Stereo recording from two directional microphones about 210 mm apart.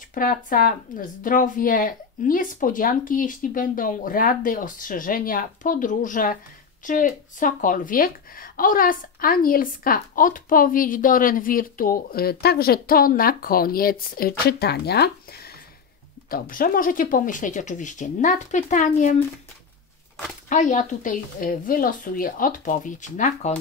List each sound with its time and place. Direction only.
0.1 s speech: 40° left (ahead or behind)
20.4 s speech: 35° left (ahead or behind)